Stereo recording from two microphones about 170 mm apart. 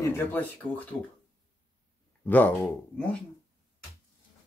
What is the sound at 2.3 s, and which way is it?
Speech, 10° left (ahead or behind).